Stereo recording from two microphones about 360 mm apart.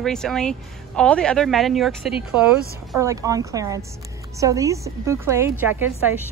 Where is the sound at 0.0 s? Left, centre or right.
Centre.